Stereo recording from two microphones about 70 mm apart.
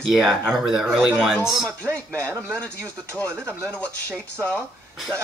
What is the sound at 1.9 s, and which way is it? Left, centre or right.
Speech, right.